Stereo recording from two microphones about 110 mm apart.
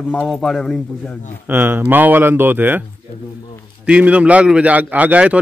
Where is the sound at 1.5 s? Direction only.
20° right (ahead or behind).